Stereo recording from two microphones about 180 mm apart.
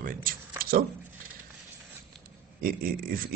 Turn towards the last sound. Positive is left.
turn(degrees=-55)  # may be behind; listen again after turning